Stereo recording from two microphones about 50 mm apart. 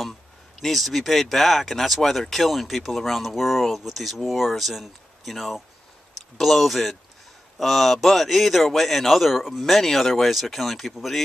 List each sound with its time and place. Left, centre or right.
0.6 s speech: centre